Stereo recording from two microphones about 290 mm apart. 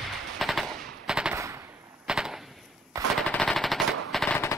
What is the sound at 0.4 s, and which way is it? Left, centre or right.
Machine gun, centre.